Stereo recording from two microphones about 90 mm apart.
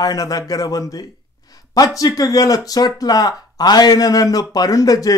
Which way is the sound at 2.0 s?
40° left (ahead or behind).